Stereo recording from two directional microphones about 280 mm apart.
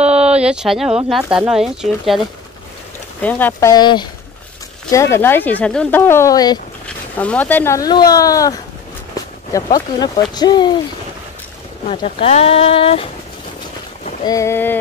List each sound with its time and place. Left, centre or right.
0.0 s a sound: centre
1.0 s speech: centre
3.2 s speech: centre
9.8 s speech: centre
11.9 s speech: centre
14.2 s speech: centre